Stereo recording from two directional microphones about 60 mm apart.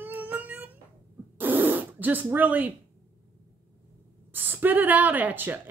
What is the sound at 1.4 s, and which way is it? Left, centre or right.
Fart, right.